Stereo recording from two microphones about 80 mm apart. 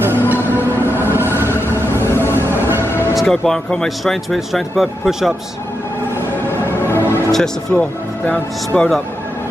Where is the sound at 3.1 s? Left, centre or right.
Centre.